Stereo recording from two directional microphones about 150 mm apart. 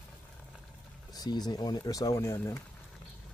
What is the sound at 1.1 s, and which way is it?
Speech, 25° left (ahead or behind).